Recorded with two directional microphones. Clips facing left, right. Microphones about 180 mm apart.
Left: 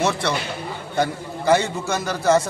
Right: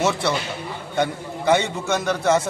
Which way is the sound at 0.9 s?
Centre (ahead or behind).